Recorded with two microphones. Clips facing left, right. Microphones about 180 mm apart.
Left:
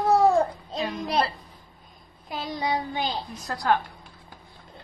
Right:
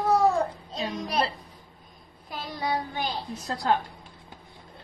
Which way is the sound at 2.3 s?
20° left (ahead or behind).